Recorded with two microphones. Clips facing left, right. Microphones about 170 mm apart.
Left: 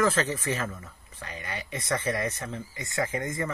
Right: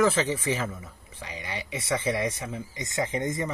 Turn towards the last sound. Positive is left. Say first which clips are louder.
# right 2 dB
turn(degrees=-20)  # may be behind; listen again after turning